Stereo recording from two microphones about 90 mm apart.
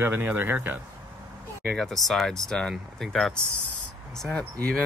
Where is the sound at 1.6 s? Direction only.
5° left (ahead or behind).